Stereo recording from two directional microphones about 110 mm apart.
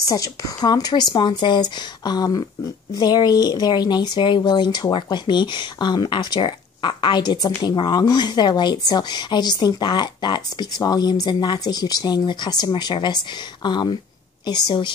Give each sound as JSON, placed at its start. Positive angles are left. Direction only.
{"t": 0.0, "sound": "speech", "side_deg": 30}